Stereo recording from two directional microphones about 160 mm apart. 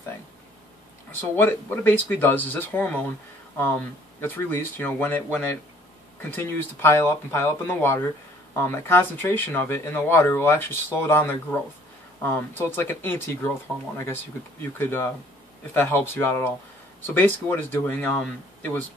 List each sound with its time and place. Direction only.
1.3 s speech: 15° left (ahead or behind)